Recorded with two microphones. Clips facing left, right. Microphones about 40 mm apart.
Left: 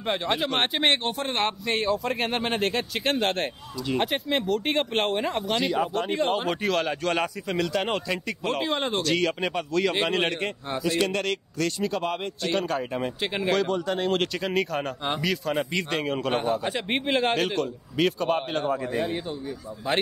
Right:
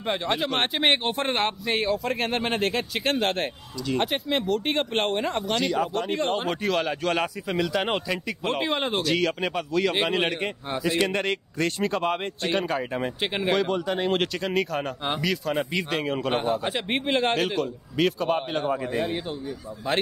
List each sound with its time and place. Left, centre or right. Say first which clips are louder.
0.0 s a man's voice: even; centre; by 11.7 s right
11.8 s speech: right 4 dB; right
12.4 s a man's voice: right 1 dB; centre
12.7 s speech: right 1 dB; centre
14.2 s a man's voice: even; centre